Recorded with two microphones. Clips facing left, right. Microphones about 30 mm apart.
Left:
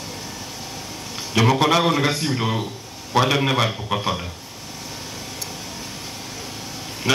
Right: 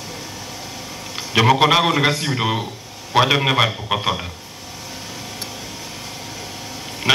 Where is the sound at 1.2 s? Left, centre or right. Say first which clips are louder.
Right 3 dB; right.